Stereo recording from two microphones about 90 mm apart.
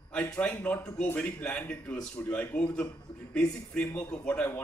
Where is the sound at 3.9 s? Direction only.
15° left (ahead or behind).